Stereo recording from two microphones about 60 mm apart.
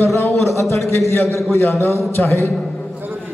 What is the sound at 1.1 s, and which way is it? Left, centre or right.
A man's voice, left.